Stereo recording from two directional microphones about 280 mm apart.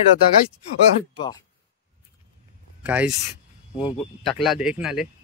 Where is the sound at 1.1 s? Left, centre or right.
Centre.